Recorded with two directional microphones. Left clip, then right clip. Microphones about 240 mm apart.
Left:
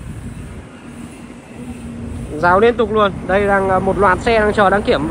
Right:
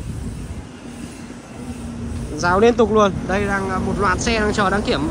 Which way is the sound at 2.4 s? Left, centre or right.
Centre.